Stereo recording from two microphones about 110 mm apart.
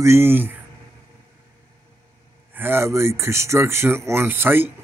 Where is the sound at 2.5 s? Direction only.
20° right (ahead or behind).